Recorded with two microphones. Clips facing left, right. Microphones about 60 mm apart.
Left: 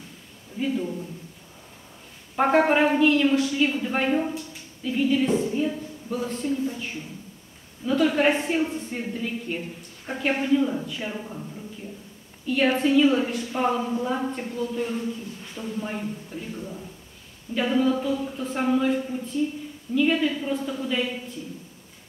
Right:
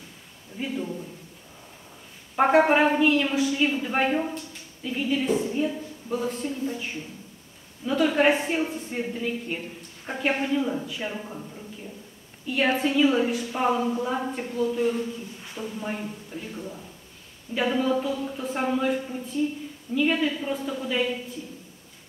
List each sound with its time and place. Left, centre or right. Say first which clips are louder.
2.3 s a woman's voice: right 1 dB; centre
7.8 s a woman's voice: even; centre
12.4 s a woman's voice: left 2 dB; centre